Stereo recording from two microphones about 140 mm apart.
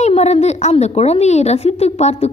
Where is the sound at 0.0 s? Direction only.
50° left (ahead or behind).